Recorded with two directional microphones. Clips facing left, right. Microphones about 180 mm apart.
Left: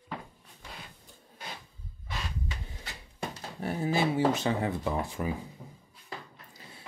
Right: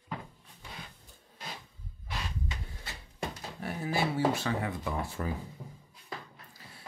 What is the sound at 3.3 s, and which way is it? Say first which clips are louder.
Speech: left 4 dB; 30° left (ahead or behind).